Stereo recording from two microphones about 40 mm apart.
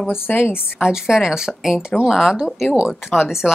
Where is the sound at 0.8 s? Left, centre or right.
Centre.